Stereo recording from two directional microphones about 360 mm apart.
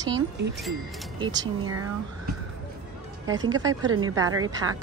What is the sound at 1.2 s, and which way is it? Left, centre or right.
Speech, centre.